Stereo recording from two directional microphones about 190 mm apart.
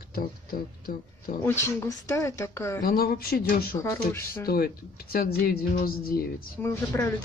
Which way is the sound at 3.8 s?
15° left (ahead or behind).